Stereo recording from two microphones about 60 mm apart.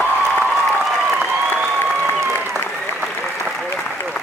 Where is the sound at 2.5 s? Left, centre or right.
Right.